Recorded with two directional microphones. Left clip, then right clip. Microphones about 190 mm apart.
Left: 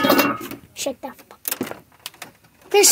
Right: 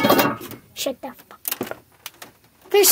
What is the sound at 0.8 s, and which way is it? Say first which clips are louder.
Speech: right 1 dB; 5° right (ahead or behind).